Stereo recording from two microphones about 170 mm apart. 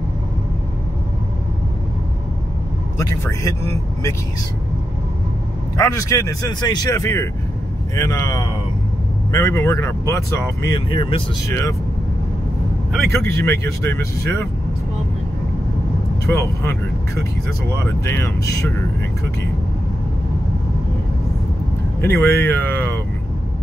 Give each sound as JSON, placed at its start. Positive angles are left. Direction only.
{"t": 3.0, "sound": "speech", "side_deg": 20}
{"t": 5.8, "sound": "speech", "side_deg": 20}
{"t": 10.9, "sound": "speech", "side_deg": 30}
{"t": 11.4, "sound": "speech", "side_deg": 20}
{"t": 13.1, "sound": "speech", "side_deg": 15}
{"t": 16.3, "sound": "speech", "side_deg": 15}
{"t": 22.0, "sound": "speech", "side_deg": 15}